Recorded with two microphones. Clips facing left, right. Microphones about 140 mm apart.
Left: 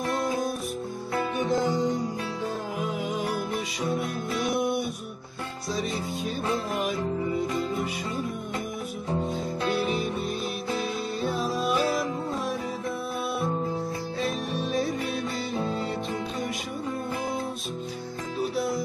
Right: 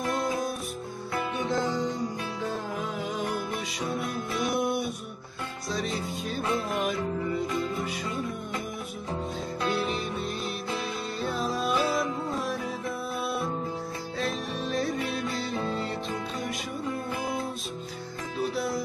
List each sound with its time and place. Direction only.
0.0 s music: centre (ahead or behind)
1.1 s music: 20° left (ahead or behind)
2.8 s music: centre (ahead or behind)
9.7 s music: centre (ahead or behind)
14.2 s music: centre (ahead or behind)
18.4 s music: centre (ahead or behind)